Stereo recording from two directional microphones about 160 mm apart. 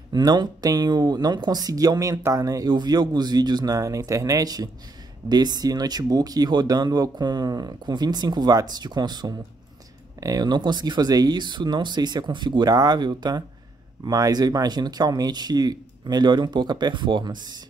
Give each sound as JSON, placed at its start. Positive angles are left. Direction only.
{"t": 0.1, "sound": "speech", "side_deg": -25}